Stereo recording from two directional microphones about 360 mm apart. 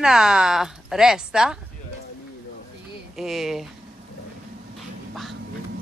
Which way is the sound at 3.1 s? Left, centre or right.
Centre.